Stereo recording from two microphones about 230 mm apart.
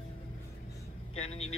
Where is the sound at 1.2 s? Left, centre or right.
Left.